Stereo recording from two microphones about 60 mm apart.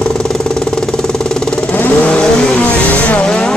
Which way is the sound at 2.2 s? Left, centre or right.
Centre.